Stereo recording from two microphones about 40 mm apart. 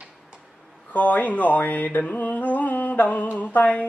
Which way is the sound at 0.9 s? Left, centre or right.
Left.